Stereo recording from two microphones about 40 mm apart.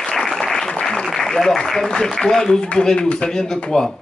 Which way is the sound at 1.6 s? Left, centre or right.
Centre.